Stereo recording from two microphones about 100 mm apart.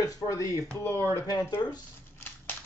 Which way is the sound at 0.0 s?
30° left (ahead or behind).